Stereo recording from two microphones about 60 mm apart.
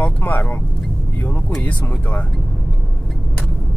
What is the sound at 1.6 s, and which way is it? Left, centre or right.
Speech, left.